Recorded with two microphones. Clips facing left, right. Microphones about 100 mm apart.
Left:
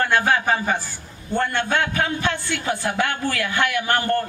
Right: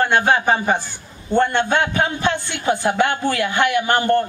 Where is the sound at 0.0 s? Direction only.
25° right (ahead or behind).